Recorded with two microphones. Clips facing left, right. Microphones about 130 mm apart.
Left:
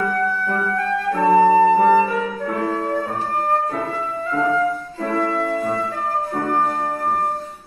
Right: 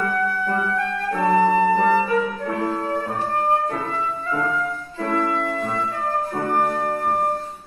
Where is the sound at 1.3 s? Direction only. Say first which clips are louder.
Left 4 dB; 30° left (ahead or behind).